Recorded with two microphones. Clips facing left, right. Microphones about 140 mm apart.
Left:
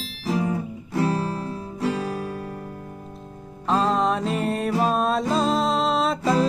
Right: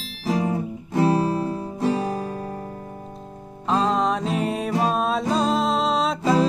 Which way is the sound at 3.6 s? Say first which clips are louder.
Even; centre (ahead or behind).